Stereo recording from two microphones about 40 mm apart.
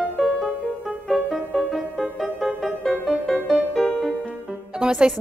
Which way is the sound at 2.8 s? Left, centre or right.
Centre.